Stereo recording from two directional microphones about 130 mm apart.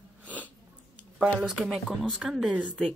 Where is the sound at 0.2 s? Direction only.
10° left (ahead or behind).